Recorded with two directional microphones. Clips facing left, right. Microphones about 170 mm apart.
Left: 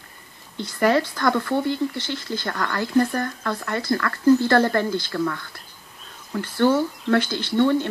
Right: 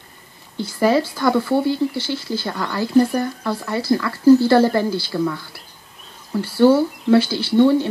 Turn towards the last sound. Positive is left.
turn(degrees=-10)  # may be behind; listen again after turning